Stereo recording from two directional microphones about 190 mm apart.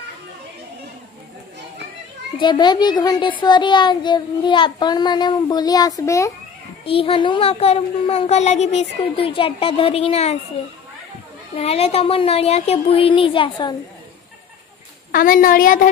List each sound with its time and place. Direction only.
2.3 s a child's voice: 25° left (ahead or behind)
6.9 s speech: 30° left (ahead or behind)
11.5 s speech: 30° left (ahead or behind)
15.0 s a woman's voice: 50° left (ahead or behind)